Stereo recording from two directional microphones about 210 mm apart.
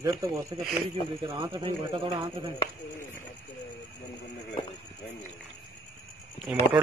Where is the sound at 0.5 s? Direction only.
25° right (ahead or behind).